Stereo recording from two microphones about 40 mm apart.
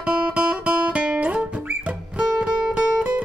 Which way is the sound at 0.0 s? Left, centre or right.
Right.